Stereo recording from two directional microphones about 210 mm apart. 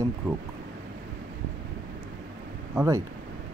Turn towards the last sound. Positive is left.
turn(degrees=-15)  # may be behind; listen again after turning